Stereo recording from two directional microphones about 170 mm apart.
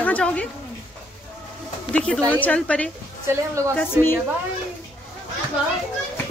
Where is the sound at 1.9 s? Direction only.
5° left (ahead or behind).